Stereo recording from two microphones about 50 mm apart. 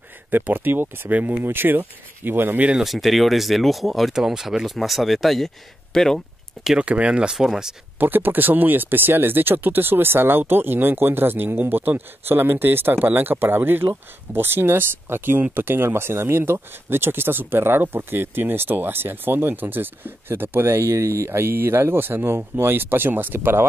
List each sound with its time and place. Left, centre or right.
0.3 s speech: right
2.8 s speech: centre
4.1 s speech: centre
6.8 s speech: right
7.3 s speech: centre
8.0 s speech: right
21.3 s speech: right